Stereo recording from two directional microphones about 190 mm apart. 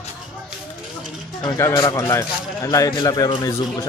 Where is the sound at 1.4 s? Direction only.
15° left (ahead or behind).